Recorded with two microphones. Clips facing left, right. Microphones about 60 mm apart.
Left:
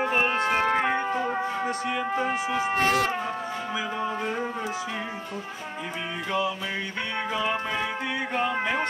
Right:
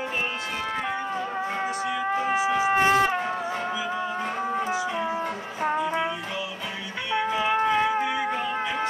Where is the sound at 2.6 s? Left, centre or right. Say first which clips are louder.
Right 3 dB; centre.